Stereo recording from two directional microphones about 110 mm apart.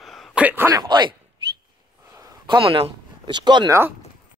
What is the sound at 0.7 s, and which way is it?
Speech, 40° right (ahead or behind).